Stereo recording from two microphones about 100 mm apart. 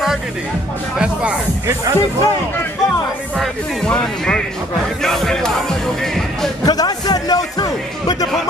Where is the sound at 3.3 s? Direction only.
10° left (ahead or behind).